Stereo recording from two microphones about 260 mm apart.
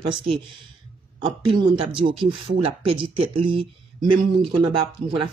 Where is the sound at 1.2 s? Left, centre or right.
Centre.